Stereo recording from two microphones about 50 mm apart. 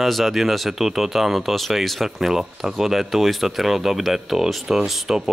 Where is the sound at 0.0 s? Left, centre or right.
Centre.